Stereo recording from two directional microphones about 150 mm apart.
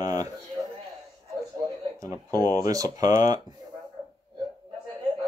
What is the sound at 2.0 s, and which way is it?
Speech, 20° right (ahead or behind).